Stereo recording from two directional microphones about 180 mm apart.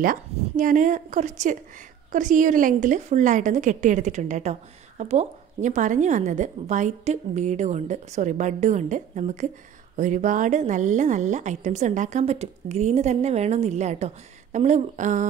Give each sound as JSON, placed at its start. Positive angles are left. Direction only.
{"t": 0.0, "sound": "a woman's voice", "side_deg": -50}